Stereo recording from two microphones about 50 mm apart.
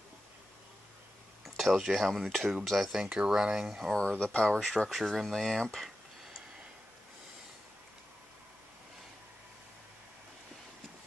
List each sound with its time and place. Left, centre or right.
1.4 s a sound: centre
1.9 s speech: centre
4.2 s speech: left
4.6 s speech: centre